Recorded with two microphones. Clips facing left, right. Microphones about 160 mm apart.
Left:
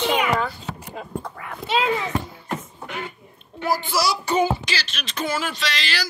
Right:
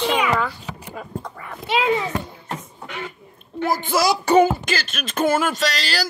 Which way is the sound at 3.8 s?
50° right (ahead or behind).